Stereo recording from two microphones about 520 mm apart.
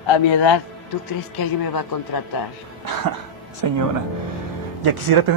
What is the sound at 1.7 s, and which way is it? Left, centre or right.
Speech, left.